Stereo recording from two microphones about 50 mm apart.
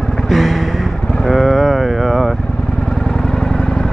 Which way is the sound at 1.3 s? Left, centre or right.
Centre.